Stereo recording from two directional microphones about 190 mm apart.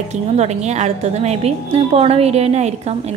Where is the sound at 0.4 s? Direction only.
35° right (ahead or behind).